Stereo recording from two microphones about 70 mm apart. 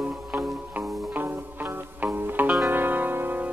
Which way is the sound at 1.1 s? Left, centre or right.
Right.